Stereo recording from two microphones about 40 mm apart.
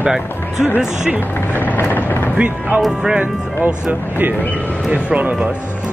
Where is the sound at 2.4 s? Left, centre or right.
Right.